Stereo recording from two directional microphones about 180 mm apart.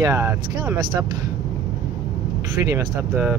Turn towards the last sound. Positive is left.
turn(degrees=-15)  # may be behind; listen again after turning